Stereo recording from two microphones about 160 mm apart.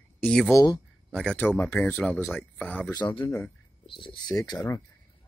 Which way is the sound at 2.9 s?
30° left (ahead or behind).